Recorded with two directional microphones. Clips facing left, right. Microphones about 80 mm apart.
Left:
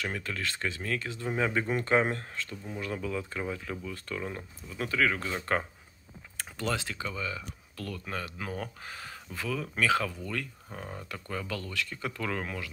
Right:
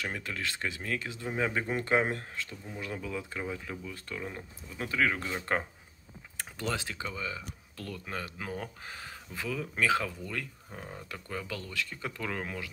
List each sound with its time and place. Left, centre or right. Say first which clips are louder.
0.0 s speech: left 1 dB; centre
10.7 s speech: left 2 dB; centre
11.1 s speech: left 2 dB; centre